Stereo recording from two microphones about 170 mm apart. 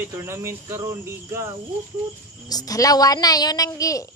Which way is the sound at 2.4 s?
20° left (ahead or behind).